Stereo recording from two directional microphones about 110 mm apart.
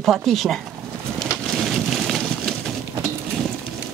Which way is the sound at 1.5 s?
Centre (ahead or behind).